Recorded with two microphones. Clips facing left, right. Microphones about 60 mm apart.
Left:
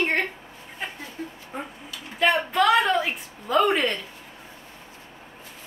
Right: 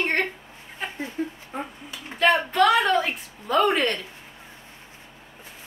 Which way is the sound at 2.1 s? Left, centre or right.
Centre.